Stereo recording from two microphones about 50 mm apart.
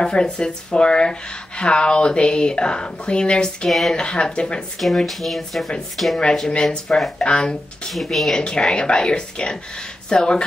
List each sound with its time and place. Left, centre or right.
0.0 s speech: centre
3.6 s speech: centre
3.9 s speech: centre
4.7 s speech: centre
7.9 s speech: centre
8.4 s speech: centre